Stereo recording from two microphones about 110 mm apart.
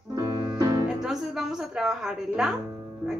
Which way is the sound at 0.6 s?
35° right (ahead or behind).